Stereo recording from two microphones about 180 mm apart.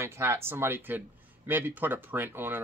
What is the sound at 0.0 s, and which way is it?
Speech, 15° right (ahead or behind).